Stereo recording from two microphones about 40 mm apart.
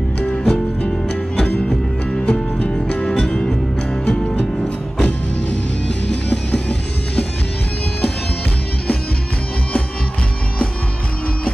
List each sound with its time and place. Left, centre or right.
0.3 s music: left
2.2 s music: left